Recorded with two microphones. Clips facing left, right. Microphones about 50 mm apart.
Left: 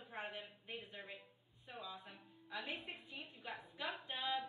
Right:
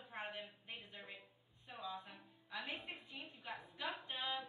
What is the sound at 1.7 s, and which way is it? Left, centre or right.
Music, centre.